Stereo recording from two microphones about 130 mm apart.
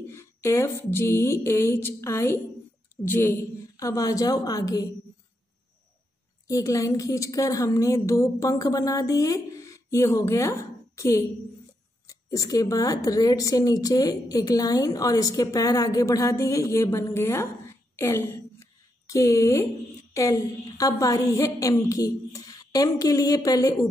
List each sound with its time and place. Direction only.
0.1 s a woman's voice: 20° left (ahead or behind)
6.4 s a woman's voice: 25° left (ahead or behind)
17.9 s a sound: 20° left (ahead or behind)
20.2 s a woman's voice: 25° left (ahead or behind)